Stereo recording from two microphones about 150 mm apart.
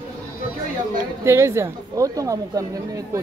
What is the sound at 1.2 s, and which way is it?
Speech, 15° right (ahead or behind).